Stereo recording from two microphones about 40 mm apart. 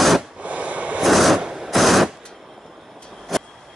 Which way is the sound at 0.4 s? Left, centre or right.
Right.